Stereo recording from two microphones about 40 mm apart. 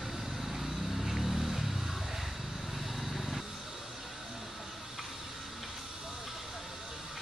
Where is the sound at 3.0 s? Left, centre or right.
Centre.